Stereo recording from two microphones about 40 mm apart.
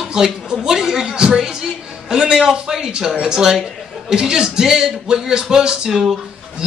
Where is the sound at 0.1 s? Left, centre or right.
Centre.